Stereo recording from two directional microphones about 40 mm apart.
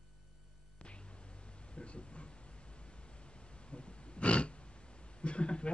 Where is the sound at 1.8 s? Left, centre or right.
Left.